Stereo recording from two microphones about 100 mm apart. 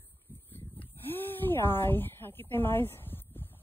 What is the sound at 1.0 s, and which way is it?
A woman's voice, 20° left (ahead or behind).